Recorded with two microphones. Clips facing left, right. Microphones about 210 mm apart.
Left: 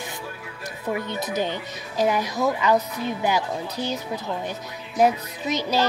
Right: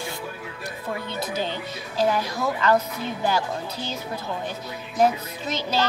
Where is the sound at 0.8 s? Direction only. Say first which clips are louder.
Left 3 dB; 15° left (ahead or behind).